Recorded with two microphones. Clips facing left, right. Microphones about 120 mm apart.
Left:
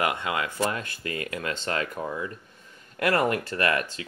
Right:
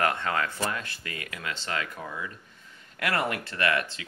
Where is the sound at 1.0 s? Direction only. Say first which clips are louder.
Left 6 dB; 35° left (ahead or behind).